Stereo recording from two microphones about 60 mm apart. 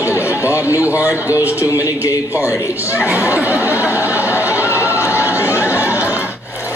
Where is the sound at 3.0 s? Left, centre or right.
Right.